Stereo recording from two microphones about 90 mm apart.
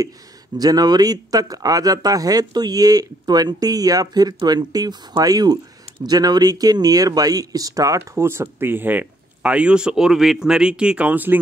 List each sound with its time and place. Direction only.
0.6 s speech: 45° right (ahead or behind); by 11.3 s 15° right (ahead or behind)